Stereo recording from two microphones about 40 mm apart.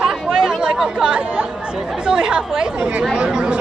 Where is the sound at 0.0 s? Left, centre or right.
Centre.